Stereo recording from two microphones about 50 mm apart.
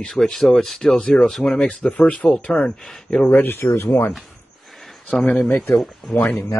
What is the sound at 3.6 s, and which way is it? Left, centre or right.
Speech, left.